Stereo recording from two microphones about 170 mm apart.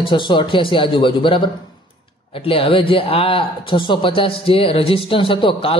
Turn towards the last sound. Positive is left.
turn(degrees=30)  # may be behind; listen again after turning